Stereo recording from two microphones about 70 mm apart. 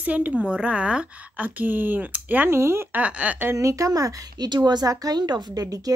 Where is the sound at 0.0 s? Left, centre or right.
Right.